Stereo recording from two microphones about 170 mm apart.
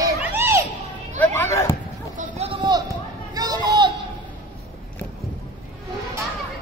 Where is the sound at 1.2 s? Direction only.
15° left (ahead or behind).